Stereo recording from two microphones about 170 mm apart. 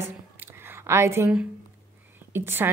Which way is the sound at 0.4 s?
15° right (ahead or behind).